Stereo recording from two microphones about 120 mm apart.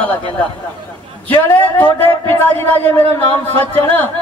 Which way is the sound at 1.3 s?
15° left (ahead or behind).